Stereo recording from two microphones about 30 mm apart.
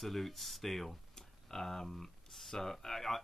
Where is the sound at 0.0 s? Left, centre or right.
Centre.